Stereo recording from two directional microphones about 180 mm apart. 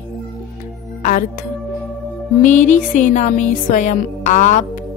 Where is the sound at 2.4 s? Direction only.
45° left (ahead or behind).